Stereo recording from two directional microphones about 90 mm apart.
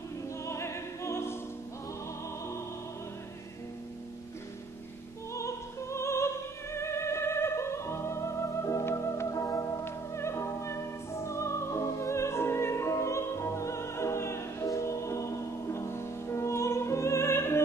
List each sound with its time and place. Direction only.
0.5 s opera: 30° left (ahead or behind)
5.3 s opera: 35° left (ahead or behind)